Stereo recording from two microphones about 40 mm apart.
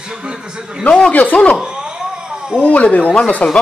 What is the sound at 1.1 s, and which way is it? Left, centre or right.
Speech, left.